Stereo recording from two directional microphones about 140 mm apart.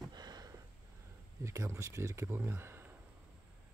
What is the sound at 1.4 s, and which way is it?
Speech, 20° right (ahead or behind).